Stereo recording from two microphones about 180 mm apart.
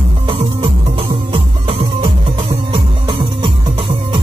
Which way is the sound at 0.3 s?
30° right (ahead or behind).